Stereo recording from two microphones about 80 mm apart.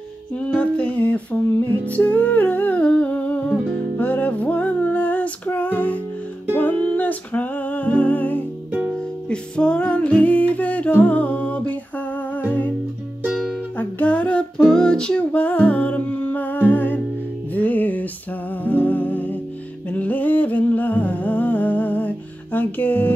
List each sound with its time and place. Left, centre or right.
0.4 s a sound: centre
1.9 s humming: left
4.0 s music: centre
13.7 s music: centre
19.9 s humming: left